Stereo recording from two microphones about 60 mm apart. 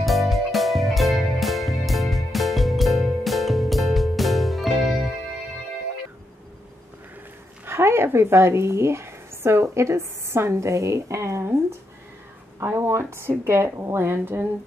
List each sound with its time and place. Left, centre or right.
0.0 s music: centre
7.6 s speech: right
12.6 s a woman's voice: right